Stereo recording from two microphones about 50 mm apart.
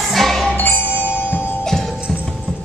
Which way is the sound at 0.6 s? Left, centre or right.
Left.